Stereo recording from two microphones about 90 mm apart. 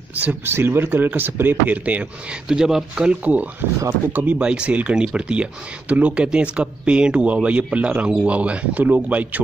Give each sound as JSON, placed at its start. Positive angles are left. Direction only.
{"t": 0.1, "sound": "speech", "side_deg": -20}